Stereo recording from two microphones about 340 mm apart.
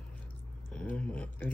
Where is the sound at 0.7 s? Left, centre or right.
Centre.